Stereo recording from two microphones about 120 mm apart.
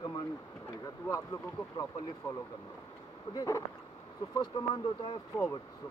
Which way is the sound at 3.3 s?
25° left (ahead or behind).